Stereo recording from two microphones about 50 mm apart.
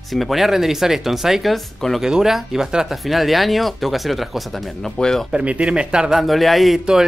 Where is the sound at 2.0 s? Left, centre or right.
Centre.